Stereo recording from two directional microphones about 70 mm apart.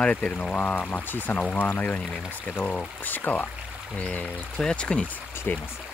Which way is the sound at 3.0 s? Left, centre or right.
Left.